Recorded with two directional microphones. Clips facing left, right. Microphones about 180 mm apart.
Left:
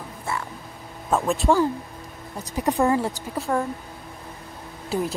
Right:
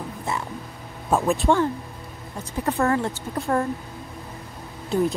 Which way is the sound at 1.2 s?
Centre (ahead or behind).